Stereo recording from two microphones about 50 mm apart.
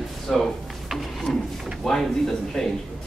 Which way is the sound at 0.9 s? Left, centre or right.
Centre.